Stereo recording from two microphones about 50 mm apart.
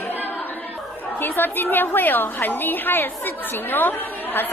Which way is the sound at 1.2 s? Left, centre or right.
Left.